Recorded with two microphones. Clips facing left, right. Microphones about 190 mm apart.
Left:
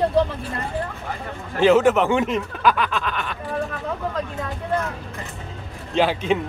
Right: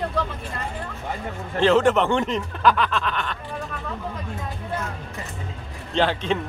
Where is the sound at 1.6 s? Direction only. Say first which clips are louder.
Left 2 dB; 5° left (ahead or behind).